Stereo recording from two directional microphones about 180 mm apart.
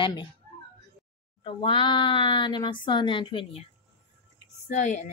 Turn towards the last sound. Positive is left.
turn(degrees=45)  # may be behind; listen again after turning